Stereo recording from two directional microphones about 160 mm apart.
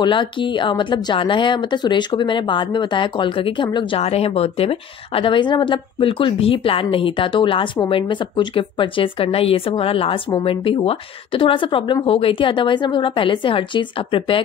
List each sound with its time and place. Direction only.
0.0 s speech: 30° left (ahead or behind)